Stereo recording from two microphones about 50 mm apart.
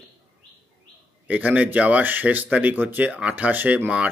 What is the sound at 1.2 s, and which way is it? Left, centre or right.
Speech, right.